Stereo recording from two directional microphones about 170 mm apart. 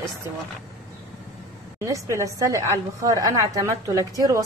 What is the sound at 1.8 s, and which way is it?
A woman's voice, 20° right (ahead or behind).